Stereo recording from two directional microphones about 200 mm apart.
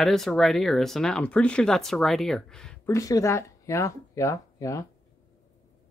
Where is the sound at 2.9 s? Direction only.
15° left (ahead or behind).